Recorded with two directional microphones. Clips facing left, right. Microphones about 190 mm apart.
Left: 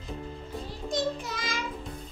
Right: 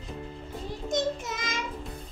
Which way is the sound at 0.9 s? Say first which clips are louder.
Right 1 dB; 20° right (ahead or behind).